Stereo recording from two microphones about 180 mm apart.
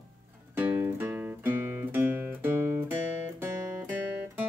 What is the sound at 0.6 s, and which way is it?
Music, 10° right (ahead or behind).